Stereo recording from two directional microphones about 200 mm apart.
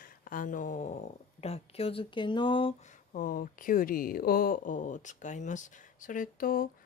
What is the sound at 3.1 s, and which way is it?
A woman's voice, 40° left (ahead or behind).